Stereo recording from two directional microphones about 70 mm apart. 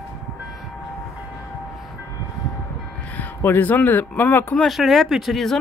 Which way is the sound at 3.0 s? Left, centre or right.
Left.